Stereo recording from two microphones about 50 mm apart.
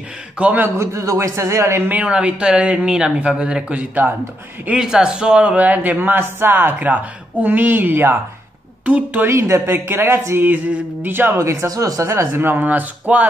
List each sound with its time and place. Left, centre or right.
0.7 s a man's voice: right
2.0 s speech: right
3.7 s speech: right
4.7 s a man's voice: centre
5.6 s speech: right
8.8 s speech: right
9.3 s speech: right
9.7 s speech: right
11.3 s speech: right
12.4 s speech: right